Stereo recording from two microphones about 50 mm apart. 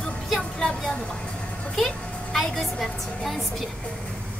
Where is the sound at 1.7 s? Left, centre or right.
Centre.